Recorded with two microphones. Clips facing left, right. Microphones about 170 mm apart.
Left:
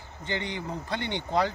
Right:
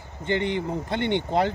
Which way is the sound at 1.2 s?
20° right (ahead or behind).